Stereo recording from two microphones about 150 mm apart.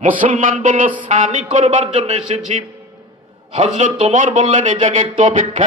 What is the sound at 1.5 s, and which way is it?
Speech, 50° right (ahead or behind).